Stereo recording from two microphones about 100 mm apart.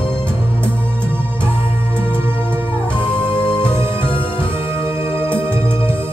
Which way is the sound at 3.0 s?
60° left (ahead or behind).